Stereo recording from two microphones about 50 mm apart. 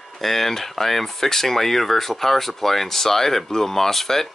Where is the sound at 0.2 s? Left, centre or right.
Centre.